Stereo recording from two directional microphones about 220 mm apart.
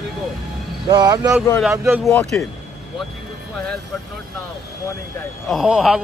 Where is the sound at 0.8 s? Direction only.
20° right (ahead or behind).